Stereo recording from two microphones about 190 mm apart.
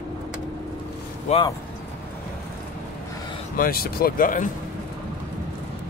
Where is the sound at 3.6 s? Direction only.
50° left (ahead or behind).